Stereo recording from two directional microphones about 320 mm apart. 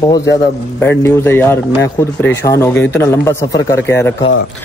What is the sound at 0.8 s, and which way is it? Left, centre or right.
Speech, centre.